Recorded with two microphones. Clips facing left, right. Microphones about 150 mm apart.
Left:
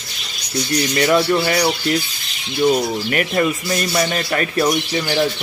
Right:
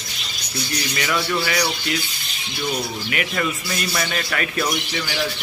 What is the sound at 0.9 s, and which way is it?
Speech, 35° left (ahead or behind).